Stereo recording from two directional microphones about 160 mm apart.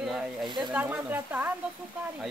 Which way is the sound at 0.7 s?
10° right (ahead or behind).